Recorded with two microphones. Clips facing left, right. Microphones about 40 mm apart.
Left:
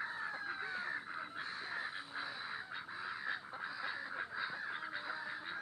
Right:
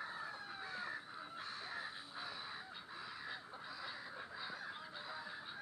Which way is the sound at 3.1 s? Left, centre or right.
Left.